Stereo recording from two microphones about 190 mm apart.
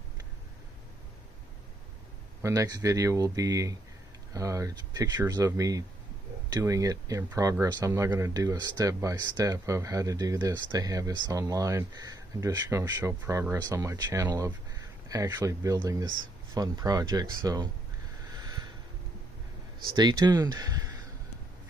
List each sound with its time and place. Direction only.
2.4 s speech: 20° right (ahead or behind)
18.3 s a sound: 20° right (ahead or behind)
20.0 s speech: 20° right (ahead or behind)